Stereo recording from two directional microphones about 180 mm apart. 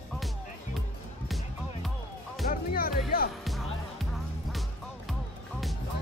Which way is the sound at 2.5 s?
55° left (ahead or behind).